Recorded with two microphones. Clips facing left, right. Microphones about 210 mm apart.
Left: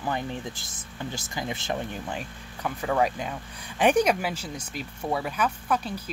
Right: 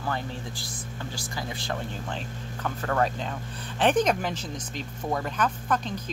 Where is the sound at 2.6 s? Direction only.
10° left (ahead or behind).